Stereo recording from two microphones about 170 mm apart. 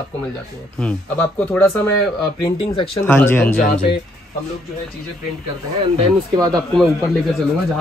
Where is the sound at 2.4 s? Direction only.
25° left (ahead or behind).